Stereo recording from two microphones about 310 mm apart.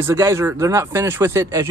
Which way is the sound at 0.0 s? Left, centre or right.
Centre.